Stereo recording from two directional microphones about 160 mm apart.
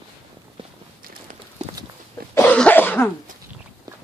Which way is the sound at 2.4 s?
10° left (ahead or behind).